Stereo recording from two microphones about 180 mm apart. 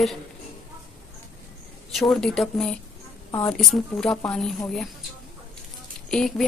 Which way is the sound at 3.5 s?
Centre (ahead or behind).